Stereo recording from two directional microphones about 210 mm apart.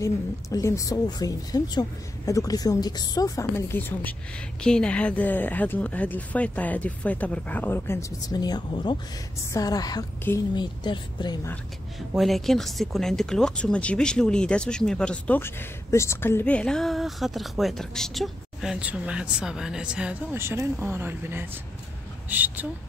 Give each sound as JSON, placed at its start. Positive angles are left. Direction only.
{"t": 0.0, "sound": "speech", "side_deg": 15}
{"t": 12.1, "sound": "speech", "side_deg": 0}